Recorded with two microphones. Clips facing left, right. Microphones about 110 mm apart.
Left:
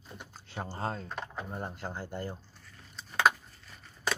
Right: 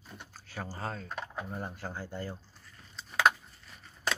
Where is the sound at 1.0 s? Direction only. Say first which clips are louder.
Even; 5° right (ahead or behind).